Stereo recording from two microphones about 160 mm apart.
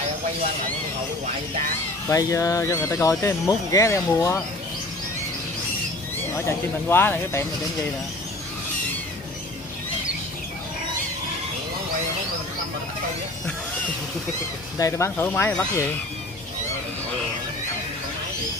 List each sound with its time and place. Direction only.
2.0 s speech: 20° left (ahead or behind)
6.3 s speech: 15° left (ahead or behind)
14.8 s speech: 20° left (ahead or behind)